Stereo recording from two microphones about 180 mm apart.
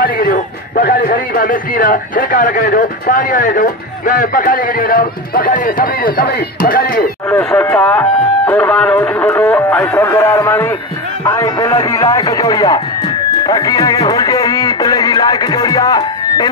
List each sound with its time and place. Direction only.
0.0 s a man's voice: 50° left (ahead or behind)
7.2 s speech: 10° left (ahead or behind)
13.4 s music: 20° left (ahead or behind)